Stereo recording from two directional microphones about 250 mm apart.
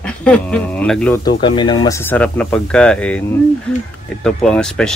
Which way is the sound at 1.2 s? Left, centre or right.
Centre.